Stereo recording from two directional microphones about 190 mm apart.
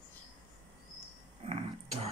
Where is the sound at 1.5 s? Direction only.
30° right (ahead or behind).